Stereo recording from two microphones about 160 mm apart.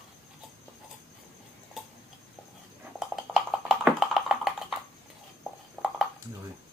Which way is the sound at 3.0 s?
Centre (ahead or behind).